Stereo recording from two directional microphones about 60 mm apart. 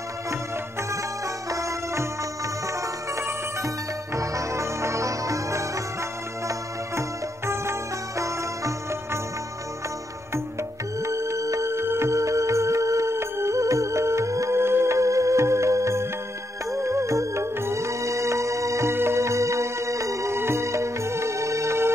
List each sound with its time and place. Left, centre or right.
1.5 s music: right
3.6 s music: right
7.0 s music: right
11.0 s music: right
11.7 s music: right